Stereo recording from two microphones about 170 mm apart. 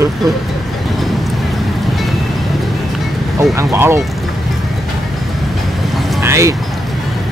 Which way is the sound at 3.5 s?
15° right (ahead or behind).